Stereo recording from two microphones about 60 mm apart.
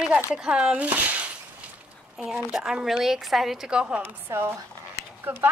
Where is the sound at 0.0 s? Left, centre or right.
Centre.